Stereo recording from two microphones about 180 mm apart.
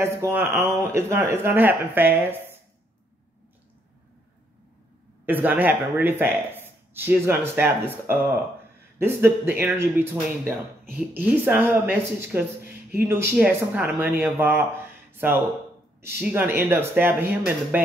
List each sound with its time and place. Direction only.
0.0 s speech: 15° right (ahead or behind)
5.2 s speech: 10° right (ahead or behind)